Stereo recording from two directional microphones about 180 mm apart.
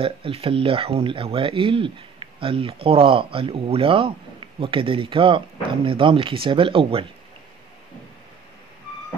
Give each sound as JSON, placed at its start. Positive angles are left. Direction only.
{"t": 0.0, "sound": "speech", "side_deg": -30}